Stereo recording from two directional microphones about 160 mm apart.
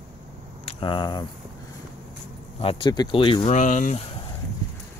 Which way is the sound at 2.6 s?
30° left (ahead or behind).